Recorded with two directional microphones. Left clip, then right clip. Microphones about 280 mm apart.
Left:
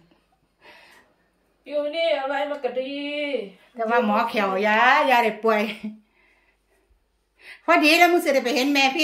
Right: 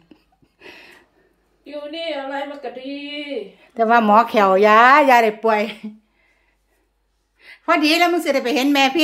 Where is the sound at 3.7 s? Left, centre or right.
Right; by 5.9 s centre.